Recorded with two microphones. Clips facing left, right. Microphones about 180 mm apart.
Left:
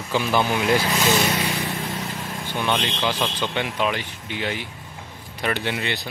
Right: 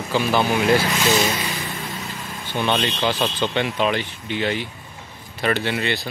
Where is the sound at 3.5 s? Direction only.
10° left (ahead or behind).